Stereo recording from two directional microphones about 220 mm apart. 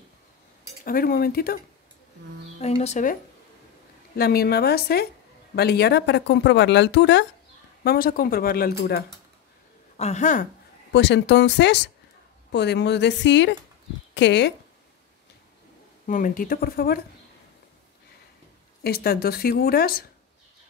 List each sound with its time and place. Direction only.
0.8 s speech: 40° left (ahead or behind)
2.6 s speech: 30° left (ahead or behind)
4.2 s speech: 45° left (ahead or behind)
7.8 s speech: 45° left (ahead or behind)
9.9 s speech: 30° left (ahead or behind)
10.9 s speech: 55° left (ahead or behind)
16.1 s speech: 35° left (ahead or behind)
18.8 s speech: 45° left (ahead or behind)